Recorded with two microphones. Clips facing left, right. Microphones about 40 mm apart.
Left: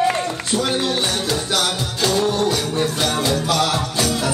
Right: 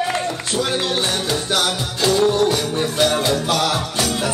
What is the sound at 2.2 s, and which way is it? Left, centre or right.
Music, right.